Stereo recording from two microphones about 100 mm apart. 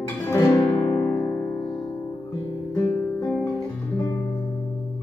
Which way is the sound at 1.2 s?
20° left (ahead or behind).